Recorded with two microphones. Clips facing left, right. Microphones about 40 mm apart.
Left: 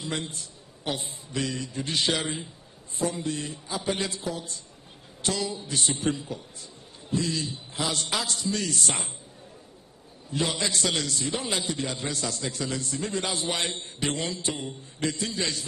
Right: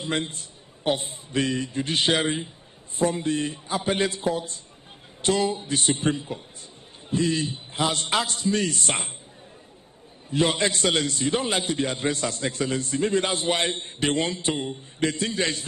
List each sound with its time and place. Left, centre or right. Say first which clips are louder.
0.0 s a man's voice: right 5 dB; right
10.3 s a man's voice: right 5 dB; right